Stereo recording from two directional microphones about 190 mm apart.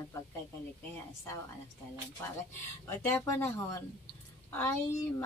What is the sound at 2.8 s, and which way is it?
A woman's voice, 15° left (ahead or behind).